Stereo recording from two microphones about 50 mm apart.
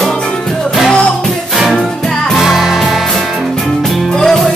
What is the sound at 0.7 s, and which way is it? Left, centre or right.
Music, centre.